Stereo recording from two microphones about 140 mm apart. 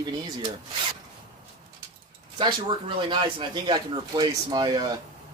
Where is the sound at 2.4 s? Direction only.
35° right (ahead or behind).